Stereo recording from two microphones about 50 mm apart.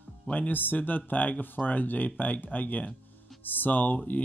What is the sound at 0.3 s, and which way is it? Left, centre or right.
Speech, left.